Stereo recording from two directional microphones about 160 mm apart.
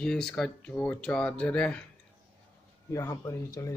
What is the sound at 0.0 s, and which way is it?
Speech, 5° left (ahead or behind).